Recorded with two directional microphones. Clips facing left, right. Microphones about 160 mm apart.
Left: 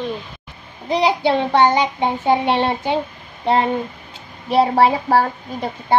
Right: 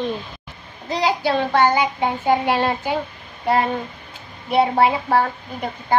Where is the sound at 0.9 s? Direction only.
20° left (ahead or behind).